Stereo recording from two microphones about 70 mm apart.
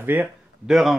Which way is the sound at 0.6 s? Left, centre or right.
Centre.